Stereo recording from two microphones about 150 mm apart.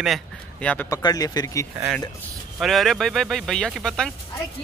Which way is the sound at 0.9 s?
25° left (ahead or behind).